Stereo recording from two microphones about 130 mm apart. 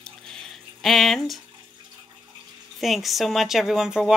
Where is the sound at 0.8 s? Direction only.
Centre (ahead or behind).